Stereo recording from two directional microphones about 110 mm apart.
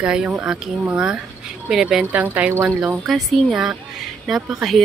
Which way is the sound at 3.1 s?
Centre (ahead or behind).